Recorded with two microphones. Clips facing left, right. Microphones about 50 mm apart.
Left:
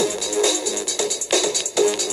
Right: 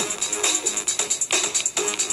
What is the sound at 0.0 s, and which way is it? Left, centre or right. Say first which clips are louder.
Music: left 8 dB; right.